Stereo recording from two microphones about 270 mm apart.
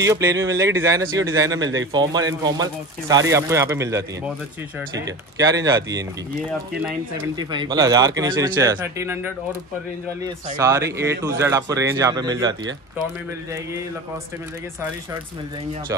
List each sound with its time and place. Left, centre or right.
0.0 s speech: centre
5.0 s speech: centre